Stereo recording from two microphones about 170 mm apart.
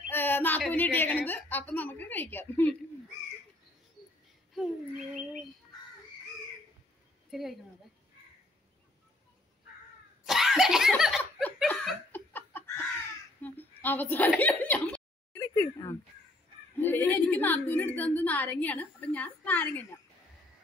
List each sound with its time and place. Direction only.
0.1 s a sound: 10° left (ahead or behind)
0.7 s a woman's voice: 10° left (ahead or behind)
7.2 s a woman's voice: centre (ahead or behind)
10.2 s laughter: centre (ahead or behind)
11.4 s laughter: 10° left (ahead or behind)
13.4 s a sound: 10° left (ahead or behind)
16.7 s a woman's voice: 10° left (ahead or behind)